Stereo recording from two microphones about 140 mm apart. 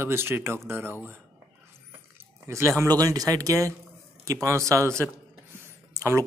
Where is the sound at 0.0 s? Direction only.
15° right (ahead or behind).